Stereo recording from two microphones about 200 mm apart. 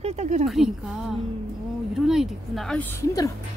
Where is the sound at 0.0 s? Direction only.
35° right (ahead or behind).